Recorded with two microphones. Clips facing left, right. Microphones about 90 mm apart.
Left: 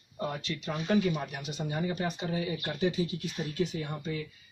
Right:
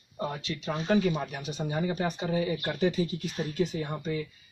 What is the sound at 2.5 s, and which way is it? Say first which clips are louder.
Speech: right 3 dB; 45° right (ahead or behind).